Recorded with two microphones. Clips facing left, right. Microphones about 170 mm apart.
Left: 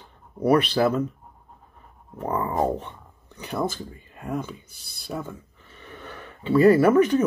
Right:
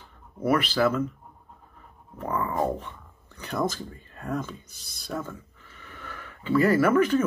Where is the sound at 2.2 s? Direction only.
20° left (ahead or behind).